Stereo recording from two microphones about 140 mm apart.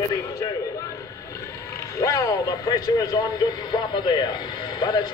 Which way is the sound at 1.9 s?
25° left (ahead or behind).